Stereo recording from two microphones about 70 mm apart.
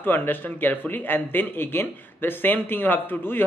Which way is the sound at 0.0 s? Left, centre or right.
Left.